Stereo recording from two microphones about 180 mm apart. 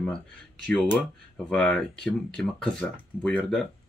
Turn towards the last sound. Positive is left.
turn(degrees=5)  # may be behind; listen again after turning